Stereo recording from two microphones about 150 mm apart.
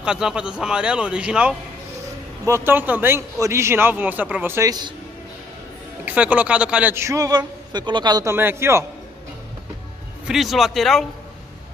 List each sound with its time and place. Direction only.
0.0 s a man's voice: 5° right (ahead or behind)
2.4 s a man's voice: 15° right (ahead or behind)
6.0 s a man's voice: 10° right (ahead or behind)
10.2 s a man's voice: centre (ahead or behind)